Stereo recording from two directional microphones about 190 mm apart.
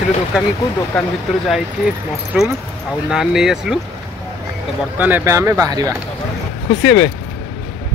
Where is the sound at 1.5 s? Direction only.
5° right (ahead or behind).